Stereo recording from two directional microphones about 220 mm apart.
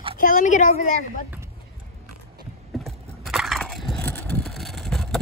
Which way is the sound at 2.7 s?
Centre (ahead or behind).